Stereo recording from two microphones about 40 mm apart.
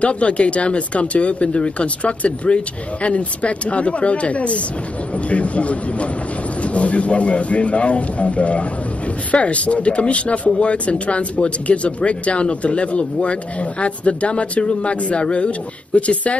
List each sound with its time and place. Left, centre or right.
0.0 s speech: left